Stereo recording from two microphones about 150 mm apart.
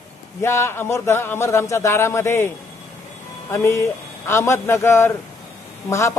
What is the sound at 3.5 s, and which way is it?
A man's voice, 15° left (ahead or behind).